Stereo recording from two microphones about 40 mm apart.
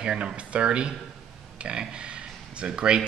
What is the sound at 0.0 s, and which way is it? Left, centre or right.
Speech, right.